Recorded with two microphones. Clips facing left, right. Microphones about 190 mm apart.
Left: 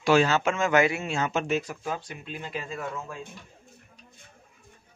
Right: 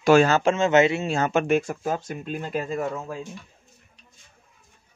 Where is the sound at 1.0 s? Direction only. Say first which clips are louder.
Right 5 dB; 40° right (ahead or behind).